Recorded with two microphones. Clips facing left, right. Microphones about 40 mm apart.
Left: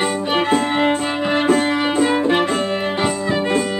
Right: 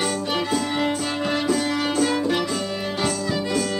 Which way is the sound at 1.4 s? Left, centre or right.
Left.